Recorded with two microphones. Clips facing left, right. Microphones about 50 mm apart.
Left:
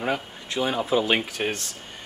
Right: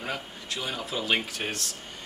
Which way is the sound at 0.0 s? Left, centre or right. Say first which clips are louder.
Left 7 dB; left.